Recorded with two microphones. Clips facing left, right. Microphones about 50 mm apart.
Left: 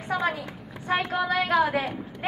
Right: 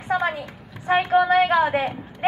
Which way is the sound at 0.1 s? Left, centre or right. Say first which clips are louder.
Right 4 dB; right.